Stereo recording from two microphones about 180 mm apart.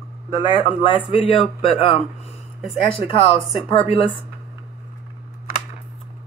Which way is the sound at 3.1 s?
30° left (ahead or behind).